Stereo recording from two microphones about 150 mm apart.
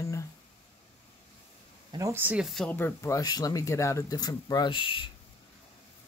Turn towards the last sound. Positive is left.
turn(degrees=35)  # may be behind; listen again after turning